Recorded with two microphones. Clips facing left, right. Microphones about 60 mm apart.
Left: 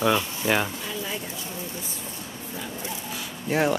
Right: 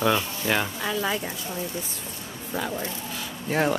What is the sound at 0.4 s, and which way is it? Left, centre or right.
Speech, centre.